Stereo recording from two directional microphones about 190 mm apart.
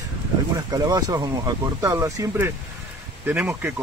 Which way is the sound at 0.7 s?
20° right (ahead or behind).